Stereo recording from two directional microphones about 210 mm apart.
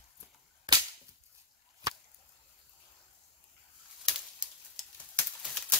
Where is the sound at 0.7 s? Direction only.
25° right (ahead or behind).